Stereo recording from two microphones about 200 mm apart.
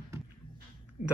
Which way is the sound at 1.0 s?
35° left (ahead or behind).